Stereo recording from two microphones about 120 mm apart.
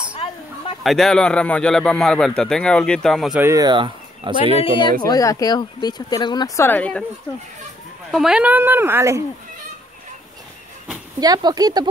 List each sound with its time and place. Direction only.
0.8 s a man's voice: 5° left (ahead or behind)
3.5 s speech: 40° right (ahead or behind)
4.6 s speech: 45° left (ahead or behind)
6.6 s speech: 15° left (ahead or behind)
8.1 s speech: 5° right (ahead or behind); by 9.2 s 20° right (ahead or behind)
11.1 s speech: 35° right (ahead or behind)